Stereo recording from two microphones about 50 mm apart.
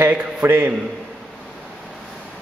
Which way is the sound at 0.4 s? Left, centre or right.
Right.